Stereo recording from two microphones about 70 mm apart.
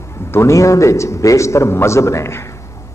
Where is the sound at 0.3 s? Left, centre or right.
Left.